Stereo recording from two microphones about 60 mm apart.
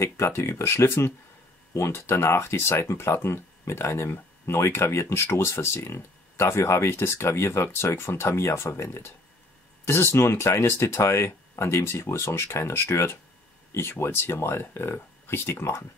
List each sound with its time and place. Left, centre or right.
0.0 s speech: left
10.1 s speech: left